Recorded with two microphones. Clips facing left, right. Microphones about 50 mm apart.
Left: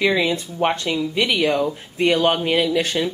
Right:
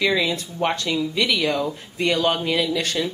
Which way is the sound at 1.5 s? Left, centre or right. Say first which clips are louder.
Left 3 dB; centre.